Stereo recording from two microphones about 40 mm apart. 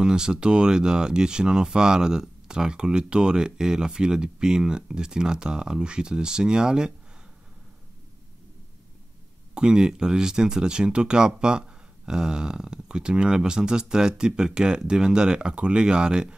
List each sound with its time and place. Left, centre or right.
0.0 s speech: centre
9.5 s speech: right